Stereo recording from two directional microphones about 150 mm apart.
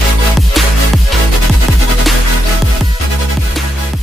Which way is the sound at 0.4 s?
Centre (ahead or behind).